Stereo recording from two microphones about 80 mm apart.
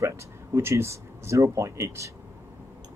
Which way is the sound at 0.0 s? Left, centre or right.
Right.